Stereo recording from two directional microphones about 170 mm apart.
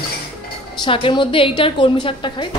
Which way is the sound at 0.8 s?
30° left (ahead or behind).